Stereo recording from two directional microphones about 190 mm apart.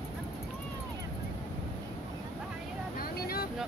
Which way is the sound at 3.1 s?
55° left (ahead or behind).